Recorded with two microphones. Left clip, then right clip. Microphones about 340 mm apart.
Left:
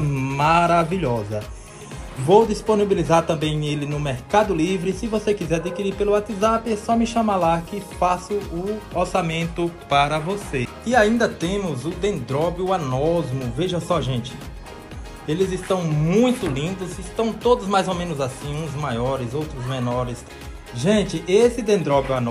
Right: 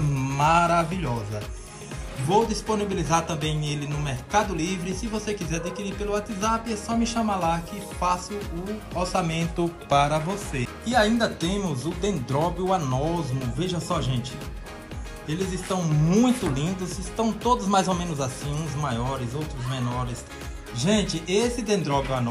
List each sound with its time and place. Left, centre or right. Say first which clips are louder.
0.1 s a man's voice: left 3 dB; centre
15.2 s speech: left 8 dB; centre
20.8 s a man's voice: left 5 dB; centre